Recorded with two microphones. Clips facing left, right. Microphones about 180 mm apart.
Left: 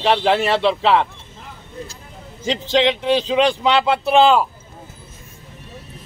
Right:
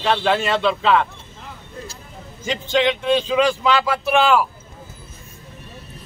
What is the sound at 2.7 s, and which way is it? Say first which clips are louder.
Speech: left 1 dB; 30° left (ahead or behind).